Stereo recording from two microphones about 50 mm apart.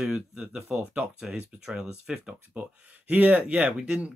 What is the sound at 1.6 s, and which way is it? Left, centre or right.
Speech, centre.